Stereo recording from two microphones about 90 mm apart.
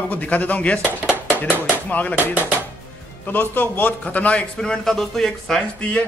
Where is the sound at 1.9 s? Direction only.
20° left (ahead or behind).